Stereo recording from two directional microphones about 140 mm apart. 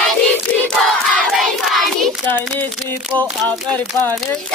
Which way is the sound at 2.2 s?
10° left (ahead or behind).